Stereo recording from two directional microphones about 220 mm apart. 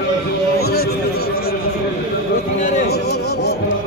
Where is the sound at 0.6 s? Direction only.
45° left (ahead or behind).